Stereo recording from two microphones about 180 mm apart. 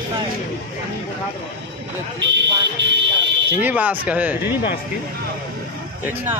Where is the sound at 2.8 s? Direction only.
75° right (ahead or behind).